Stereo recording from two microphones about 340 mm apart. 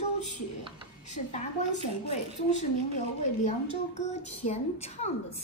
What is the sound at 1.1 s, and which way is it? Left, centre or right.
A woman's voice, centre.